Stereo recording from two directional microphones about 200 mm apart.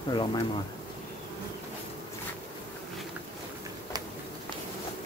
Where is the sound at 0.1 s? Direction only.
25° left (ahead or behind).